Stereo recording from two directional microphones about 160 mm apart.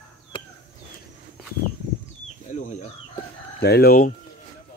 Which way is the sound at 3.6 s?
80° left.